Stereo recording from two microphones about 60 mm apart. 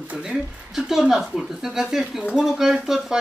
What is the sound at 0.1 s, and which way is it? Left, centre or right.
Speech, centre.